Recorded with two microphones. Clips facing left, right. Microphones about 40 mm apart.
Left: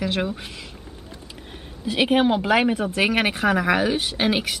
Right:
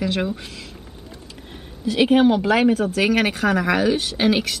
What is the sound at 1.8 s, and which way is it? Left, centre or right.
Speech, centre.